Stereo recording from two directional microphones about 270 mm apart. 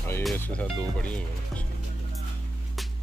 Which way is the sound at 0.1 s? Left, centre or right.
Centre.